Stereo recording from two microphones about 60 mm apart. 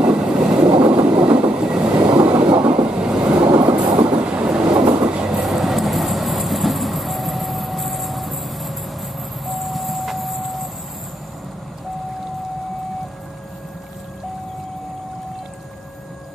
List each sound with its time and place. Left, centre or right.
0.0 s train: centre
4.7 s train: right
5.0 s train: centre
5.3 s train: centre
9.5 s vehicle: centre